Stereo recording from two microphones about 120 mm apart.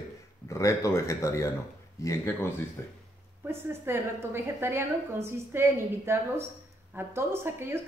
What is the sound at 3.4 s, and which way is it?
A woman's voice, 20° right (ahead or behind).